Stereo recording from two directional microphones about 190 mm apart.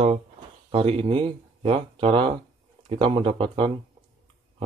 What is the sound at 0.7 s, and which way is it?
Speech, 30° right (ahead or behind).